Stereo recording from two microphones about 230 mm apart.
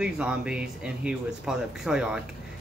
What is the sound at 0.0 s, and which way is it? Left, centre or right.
Speech, centre.